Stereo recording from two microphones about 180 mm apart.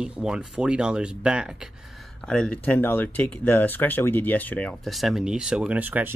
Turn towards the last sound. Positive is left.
turn(degrees=-10)  # may be behind; listen again after turning